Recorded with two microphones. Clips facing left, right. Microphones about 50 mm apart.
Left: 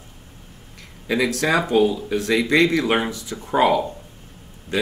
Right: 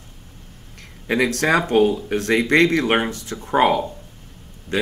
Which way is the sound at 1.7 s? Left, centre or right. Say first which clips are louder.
Right 1 dB; right.